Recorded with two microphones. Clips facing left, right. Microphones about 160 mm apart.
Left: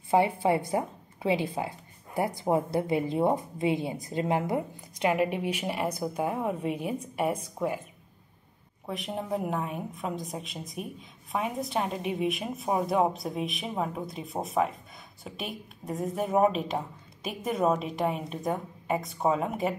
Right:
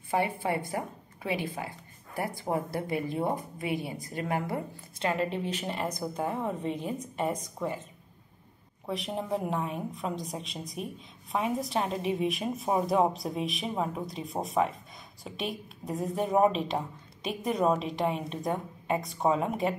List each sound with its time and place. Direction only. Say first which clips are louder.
0.1 s a woman's voice: left 5 dB; 20° left (ahead or behind)
8.8 s a woman's voice: right 1 dB; centre (ahead or behind)